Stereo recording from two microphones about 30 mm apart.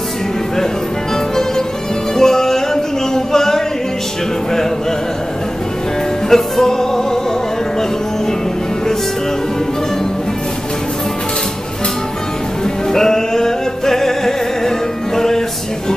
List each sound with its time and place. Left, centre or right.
2.1 s music: centre
6.2 s music: centre
12.9 s music: centre